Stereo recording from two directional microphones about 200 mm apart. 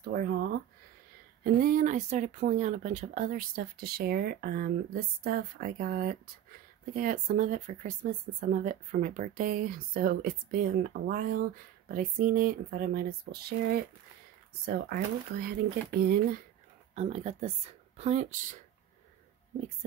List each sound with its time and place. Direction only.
0.0 s speech: 50° right (ahead or behind)
16.9 s speech: 35° right (ahead or behind)